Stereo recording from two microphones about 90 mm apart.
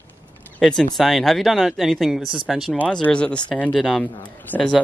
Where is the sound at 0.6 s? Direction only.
5° left (ahead or behind).